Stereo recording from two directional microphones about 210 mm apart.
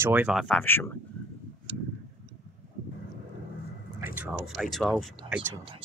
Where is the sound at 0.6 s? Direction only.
10° left (ahead or behind).